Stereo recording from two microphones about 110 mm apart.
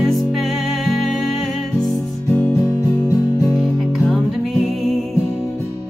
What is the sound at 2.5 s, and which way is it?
Music, 20° left (ahead or behind).